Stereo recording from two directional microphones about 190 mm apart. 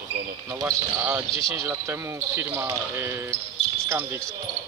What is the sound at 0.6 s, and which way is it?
Speech, 10° right (ahead or behind).